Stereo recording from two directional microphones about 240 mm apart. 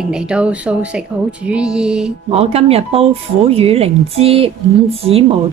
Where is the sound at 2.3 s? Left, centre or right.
Right.